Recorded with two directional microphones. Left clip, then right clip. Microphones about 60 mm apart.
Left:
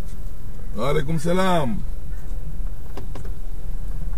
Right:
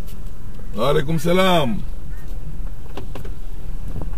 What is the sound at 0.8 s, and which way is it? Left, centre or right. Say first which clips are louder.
Speech: right 5 dB; centre.